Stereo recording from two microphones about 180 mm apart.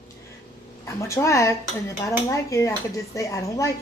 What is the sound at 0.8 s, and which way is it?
A woman's voice, 15° left (ahead or behind).